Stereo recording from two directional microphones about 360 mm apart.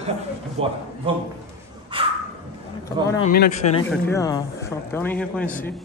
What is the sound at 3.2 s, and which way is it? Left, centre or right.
A man's voice, left.